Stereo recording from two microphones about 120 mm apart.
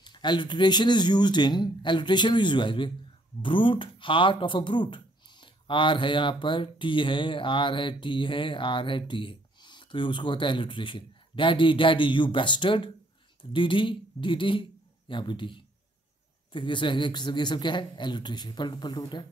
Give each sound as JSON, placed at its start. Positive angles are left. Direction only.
{"t": 0.0, "sound": "a man's voice", "side_deg": 40}